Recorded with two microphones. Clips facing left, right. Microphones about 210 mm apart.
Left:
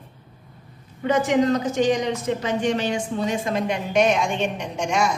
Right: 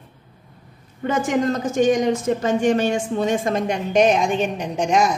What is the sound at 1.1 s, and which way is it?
Speech, 50° right (ahead or behind).